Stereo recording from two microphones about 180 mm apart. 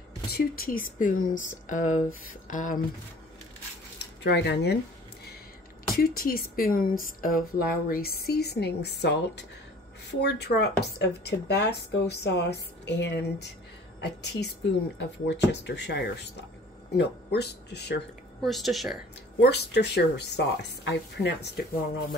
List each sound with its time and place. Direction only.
0.3 s speech: 55° left (ahead or behind)
4.2 s speech: 70° left (ahead or behind)
5.9 s a woman's voice: 55° left (ahead or behind)
18.4 s speech: centre (ahead or behind)
19.4 s speech: 65° left (ahead or behind)